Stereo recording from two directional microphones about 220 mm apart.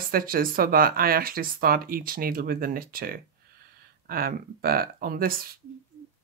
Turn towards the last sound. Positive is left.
turn(degrees=-40)  # may be behind; listen again after turning